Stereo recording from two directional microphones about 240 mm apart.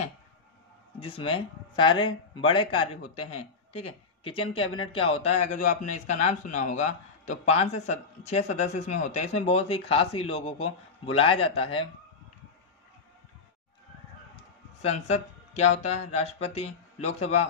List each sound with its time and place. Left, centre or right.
0.9 s speech: left
14.8 s speech: left